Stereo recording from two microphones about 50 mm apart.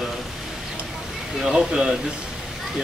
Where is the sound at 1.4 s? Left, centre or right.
Centre.